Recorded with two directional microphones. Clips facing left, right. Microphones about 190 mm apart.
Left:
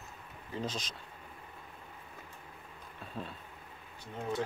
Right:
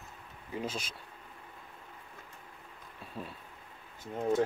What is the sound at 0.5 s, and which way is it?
Speech, 10° right (ahead or behind).